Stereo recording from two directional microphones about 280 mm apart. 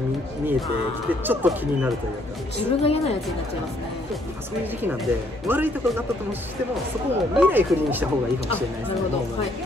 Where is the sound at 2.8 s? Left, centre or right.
Left.